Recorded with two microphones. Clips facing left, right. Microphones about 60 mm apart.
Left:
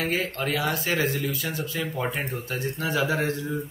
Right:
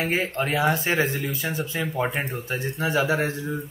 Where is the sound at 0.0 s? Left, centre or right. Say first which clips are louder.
Right 2 dB; right.